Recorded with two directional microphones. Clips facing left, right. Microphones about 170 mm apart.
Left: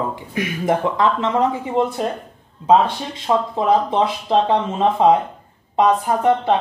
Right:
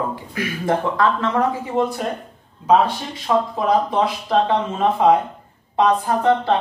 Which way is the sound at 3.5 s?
25° left (ahead or behind).